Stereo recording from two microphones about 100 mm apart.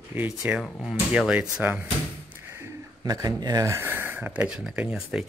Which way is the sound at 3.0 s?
40° right (ahead or behind).